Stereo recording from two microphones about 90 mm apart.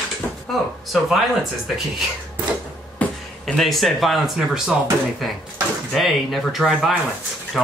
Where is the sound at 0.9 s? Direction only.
Centre (ahead or behind).